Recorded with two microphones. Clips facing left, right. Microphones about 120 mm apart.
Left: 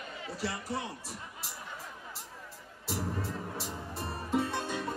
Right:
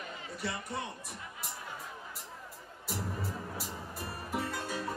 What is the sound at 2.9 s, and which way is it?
Music, centre (ahead or behind).